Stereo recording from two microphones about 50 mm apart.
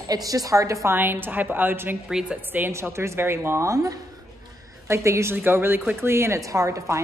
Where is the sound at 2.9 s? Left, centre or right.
Right.